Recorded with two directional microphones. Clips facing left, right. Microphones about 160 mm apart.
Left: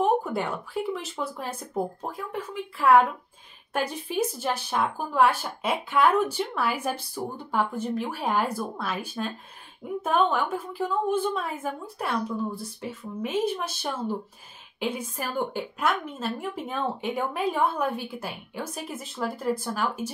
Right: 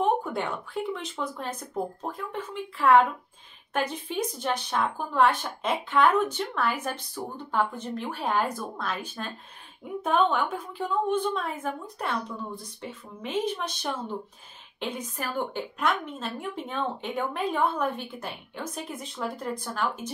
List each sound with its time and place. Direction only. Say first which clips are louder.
0.0 s a woman's voice: left 2 dB; 5° left (ahead or behind)